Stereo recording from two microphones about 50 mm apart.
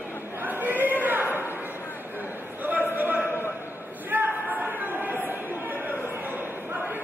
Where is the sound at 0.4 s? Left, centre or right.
Right.